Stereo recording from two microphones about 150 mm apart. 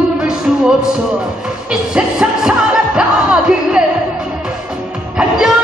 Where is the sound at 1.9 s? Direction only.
5° right (ahead or behind).